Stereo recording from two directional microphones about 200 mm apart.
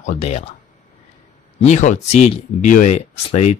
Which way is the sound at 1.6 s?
35° left (ahead or behind).